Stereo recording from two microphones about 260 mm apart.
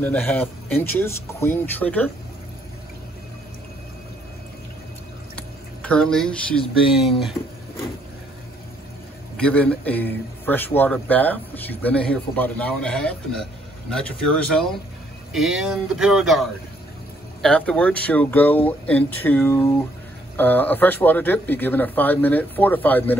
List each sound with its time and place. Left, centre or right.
0.0 s a man's voice: centre
5.3 s a sound: centre
7.0 s a man's voice: centre
9.4 s a man's voice: centre